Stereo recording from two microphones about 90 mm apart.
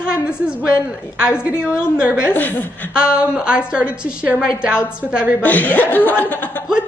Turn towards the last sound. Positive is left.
turn(degrees=20)  # may be behind; listen again after turning